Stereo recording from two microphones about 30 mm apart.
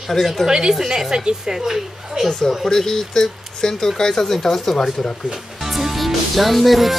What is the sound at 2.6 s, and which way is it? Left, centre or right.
Speech, centre.